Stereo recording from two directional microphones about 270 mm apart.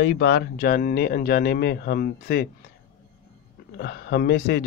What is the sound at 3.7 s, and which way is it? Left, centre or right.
Speech, left.